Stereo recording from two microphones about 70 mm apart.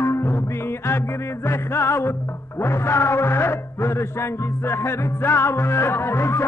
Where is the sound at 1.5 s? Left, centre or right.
Left.